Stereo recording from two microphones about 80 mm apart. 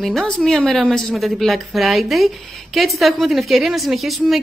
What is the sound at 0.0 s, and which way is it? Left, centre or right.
A woman's voice, centre.